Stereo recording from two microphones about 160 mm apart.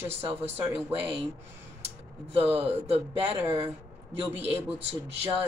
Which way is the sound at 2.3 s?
40° right (ahead or behind).